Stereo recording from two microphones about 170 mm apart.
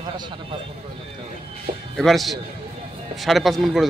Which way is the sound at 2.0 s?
Centre (ahead or behind).